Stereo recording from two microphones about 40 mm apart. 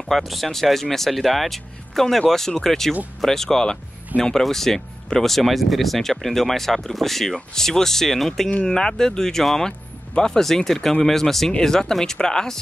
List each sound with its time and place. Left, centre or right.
0.1 s speech: centre